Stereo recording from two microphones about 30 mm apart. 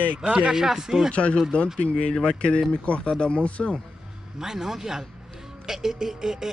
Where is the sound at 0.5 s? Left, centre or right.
Centre.